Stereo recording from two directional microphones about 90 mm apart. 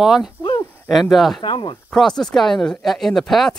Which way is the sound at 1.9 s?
5° left (ahead or behind).